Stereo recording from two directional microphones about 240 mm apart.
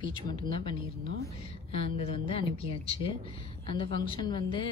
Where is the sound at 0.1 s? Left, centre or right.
Centre.